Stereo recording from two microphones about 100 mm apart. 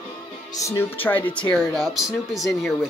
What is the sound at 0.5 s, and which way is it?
Speech, 30° left (ahead or behind).